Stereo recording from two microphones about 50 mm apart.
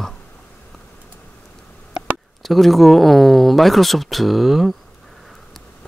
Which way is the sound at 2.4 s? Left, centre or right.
Centre.